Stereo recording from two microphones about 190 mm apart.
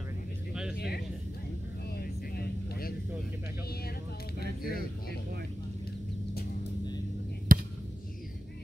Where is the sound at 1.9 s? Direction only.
55° left (ahead or behind).